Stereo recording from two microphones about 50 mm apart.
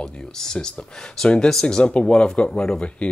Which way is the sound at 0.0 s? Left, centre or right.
Centre.